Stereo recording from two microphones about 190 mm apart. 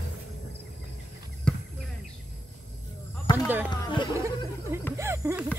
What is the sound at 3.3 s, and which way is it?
Basketball bounce, 25° left (ahead or behind).